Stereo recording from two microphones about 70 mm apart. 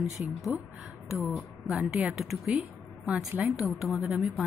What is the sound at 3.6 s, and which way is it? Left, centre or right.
Speech, centre.